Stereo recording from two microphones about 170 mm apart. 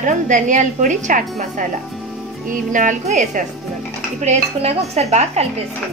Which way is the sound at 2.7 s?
45° right (ahead or behind).